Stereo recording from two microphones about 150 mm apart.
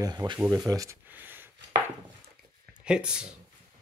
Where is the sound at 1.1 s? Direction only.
10° right (ahead or behind).